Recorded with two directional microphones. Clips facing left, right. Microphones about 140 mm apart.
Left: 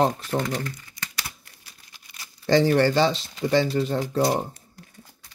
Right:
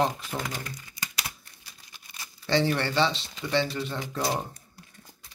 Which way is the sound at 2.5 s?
40° left (ahead or behind).